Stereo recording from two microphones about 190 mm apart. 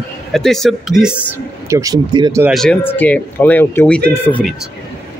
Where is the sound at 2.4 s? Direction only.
Centre (ahead or behind).